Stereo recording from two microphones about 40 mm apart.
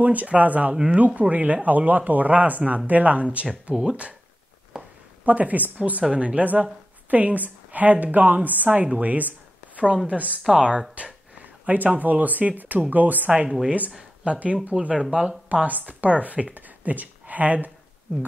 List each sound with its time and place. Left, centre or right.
0.0 s speech: right
4.7 s a sound: centre
5.2 s a woman's voice: right
9.8 s a woman's voice: right
13.3 s speech: right
15.0 s speech: centre
15.6 s speech: right
16.5 s a sound: right